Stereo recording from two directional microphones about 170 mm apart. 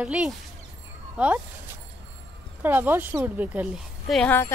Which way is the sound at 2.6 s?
10° right (ahead or behind).